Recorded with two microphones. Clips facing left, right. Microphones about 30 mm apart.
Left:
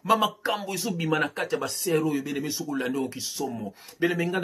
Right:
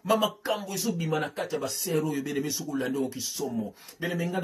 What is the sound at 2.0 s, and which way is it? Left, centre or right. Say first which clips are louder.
Speech: left 2 dB; centre.